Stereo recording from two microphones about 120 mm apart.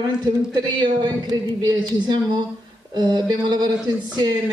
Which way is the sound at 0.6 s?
35° right (ahead or behind).